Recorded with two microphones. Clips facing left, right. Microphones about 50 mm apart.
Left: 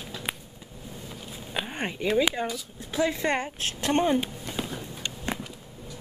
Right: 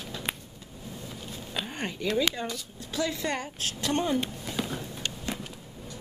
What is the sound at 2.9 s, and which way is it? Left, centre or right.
A woman's voice, left.